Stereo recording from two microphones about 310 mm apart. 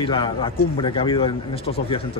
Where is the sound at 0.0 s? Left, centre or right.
Centre.